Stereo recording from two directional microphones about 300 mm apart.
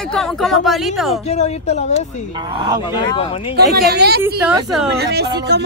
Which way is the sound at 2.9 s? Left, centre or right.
Centre.